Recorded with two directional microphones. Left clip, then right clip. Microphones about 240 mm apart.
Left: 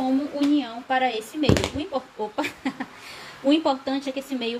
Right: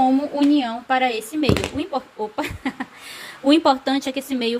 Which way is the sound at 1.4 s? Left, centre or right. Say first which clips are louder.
Even; centre.